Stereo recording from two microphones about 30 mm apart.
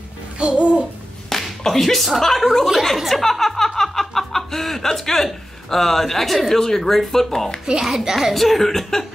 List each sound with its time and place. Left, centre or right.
0.4 s babbling: right
1.3 s slap: centre
1.7 s speech: centre
3.1 s chuckle: centre
6.5 s speech: centre
7.8 s a child's voice: centre
8.2 s speech: centre